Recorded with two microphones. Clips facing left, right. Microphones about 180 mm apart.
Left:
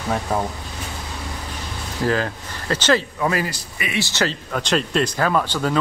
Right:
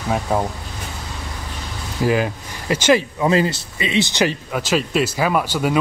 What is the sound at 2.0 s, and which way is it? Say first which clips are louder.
Speech: right 3 dB; 10° right (ahead or behind).